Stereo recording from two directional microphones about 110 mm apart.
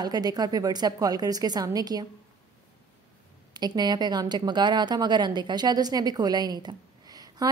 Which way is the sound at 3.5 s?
40° right (ahead or behind).